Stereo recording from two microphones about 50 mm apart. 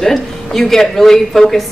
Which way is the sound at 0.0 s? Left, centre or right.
Centre.